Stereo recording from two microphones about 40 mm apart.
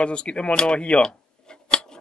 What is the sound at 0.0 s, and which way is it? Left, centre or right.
Speech, left.